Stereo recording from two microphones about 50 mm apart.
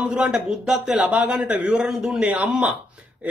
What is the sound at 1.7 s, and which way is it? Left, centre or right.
Speech, centre.